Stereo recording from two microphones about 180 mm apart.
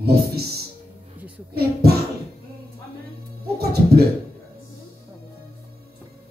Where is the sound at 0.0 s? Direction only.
60° right (ahead or behind).